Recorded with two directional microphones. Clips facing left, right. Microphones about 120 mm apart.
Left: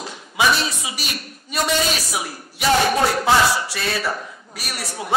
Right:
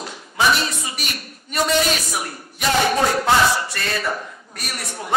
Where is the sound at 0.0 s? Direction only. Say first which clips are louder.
Even; 5° left (ahead or behind).